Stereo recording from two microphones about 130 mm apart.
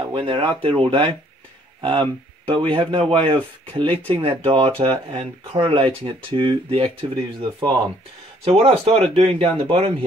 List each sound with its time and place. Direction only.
0.0 s speech: 40° right (ahead or behind)
8.5 s speech: 45° right (ahead or behind)